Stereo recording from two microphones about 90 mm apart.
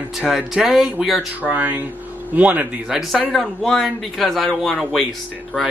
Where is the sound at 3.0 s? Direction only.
Centre (ahead or behind).